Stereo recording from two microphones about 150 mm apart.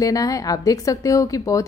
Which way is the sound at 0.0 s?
25° left (ahead or behind).